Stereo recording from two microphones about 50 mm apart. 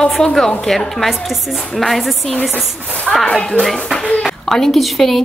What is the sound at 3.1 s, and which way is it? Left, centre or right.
A woman's voice, centre.